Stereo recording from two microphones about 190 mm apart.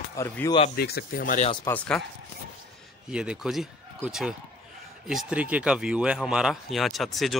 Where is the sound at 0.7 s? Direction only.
55° left (ahead or behind).